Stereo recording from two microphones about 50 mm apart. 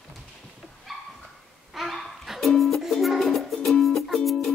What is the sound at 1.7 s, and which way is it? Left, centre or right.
Music, centre.